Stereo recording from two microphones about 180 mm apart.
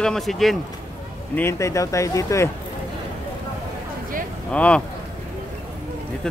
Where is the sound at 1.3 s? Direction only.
15° left (ahead or behind).